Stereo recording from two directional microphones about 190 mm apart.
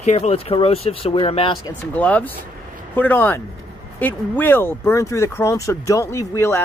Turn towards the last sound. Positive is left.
turn(degrees=15)  # may be behind; listen again after turning